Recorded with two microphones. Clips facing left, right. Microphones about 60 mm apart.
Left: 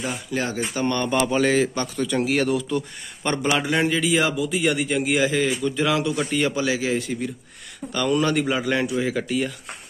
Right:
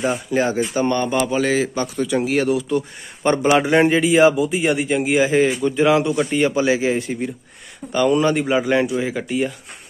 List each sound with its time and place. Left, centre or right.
0.0 s speech: right
0.7 s speech: centre
1.2 s a man's voice: centre
5.3 s a man's voice: right